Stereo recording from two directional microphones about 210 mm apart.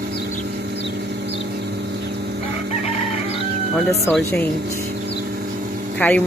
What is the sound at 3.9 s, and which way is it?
Speech, centre (ahead or behind).